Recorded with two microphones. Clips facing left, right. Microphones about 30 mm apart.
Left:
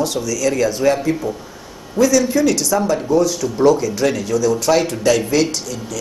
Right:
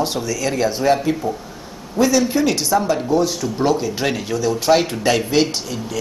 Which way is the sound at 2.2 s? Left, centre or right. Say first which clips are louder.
Left 2 dB; right.